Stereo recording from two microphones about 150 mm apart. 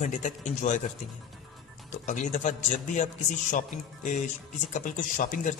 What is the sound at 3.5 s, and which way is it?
Speech, 60° left (ahead or behind).